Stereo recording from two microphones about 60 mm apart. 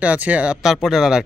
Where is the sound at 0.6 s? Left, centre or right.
Centre.